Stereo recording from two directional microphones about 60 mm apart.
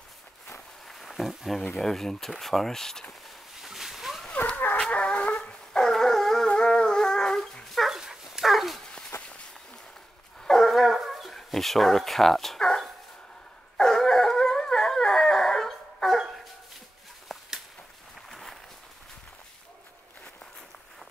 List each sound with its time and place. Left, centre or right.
0.8 s a sound: centre
1.6 s speech: centre
3.5 s dog: centre
4.7 s dog: centre
6.5 s dog: centre
7.9 s dog: centre
9.1 s a sound: left
10.4 s dog: centre
17.3 s a sound: centre